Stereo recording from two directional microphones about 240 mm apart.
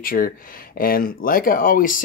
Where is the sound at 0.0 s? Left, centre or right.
Left.